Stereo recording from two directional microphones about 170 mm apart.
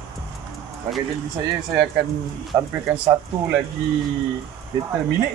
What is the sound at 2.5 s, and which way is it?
Speech, 20° right (ahead or behind).